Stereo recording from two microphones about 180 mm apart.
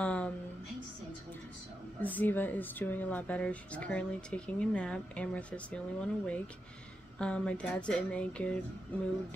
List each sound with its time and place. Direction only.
0.0 s a woman's voice: 5° left (ahead or behind)
2.0 s speech: 10° left (ahead or behind)